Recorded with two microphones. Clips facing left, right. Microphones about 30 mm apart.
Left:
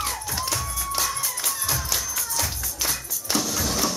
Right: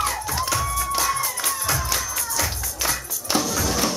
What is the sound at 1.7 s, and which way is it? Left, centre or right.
Music, centre.